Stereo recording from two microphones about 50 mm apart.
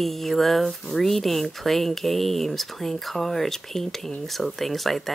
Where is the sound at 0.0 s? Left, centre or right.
Centre.